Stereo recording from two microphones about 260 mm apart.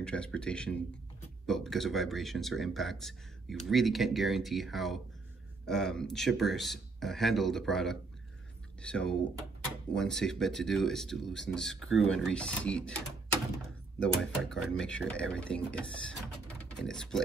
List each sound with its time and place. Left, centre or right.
0.0 s speech: centre
14.0 s speech: centre